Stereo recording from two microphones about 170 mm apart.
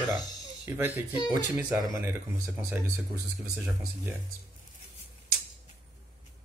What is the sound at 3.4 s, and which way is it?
Speech, 10° right (ahead or behind).